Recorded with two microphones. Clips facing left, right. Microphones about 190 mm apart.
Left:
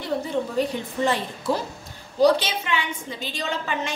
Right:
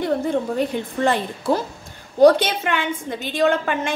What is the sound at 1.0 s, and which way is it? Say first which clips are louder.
A woman's voice: right 3 dB; 55° right (ahead or behind).